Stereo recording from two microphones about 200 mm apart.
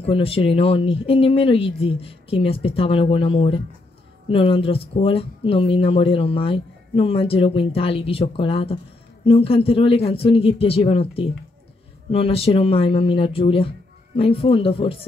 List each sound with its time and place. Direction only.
0.0 s speech: 30° left (ahead or behind)